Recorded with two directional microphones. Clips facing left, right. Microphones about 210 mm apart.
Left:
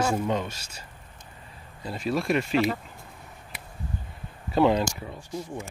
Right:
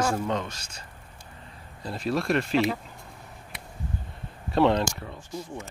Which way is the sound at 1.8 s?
Centre (ahead or behind).